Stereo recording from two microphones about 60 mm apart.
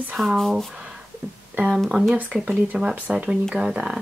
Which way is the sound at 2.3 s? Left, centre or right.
Right.